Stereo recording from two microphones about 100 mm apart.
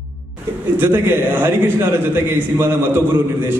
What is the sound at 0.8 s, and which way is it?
A man's voice, 25° right (ahead or behind).